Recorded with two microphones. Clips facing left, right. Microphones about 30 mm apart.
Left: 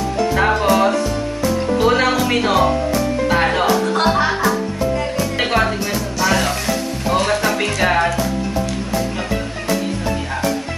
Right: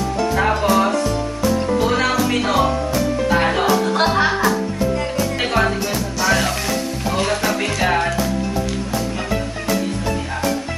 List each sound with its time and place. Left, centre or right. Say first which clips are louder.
0.5 s music: left 1 dB; centre
1.8 s music: left 6 dB; left
2.0 s music: left 2 dB; centre
5.1 s music: left 1 dB; centre